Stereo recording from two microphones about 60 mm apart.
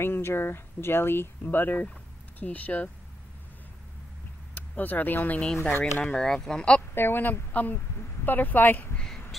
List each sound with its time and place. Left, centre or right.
0.0 s speech: left
4.6 s speech: left
5.4 s speech: centre
5.7 s speech: left
6.0 s speech: centre
7.0 s speech: left
8.9 s a sound: centre